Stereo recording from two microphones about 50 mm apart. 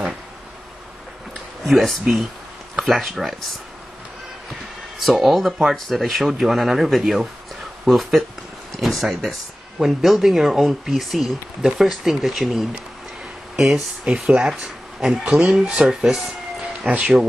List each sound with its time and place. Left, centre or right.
1.6 s speech: centre
4.9 s speech: centre
14.0 s speech: centre